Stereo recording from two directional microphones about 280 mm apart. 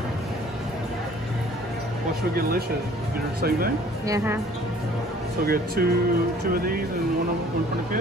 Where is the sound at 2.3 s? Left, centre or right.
Right.